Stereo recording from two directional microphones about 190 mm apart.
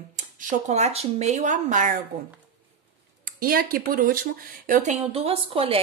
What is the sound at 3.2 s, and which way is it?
Speech, 50° right (ahead or behind).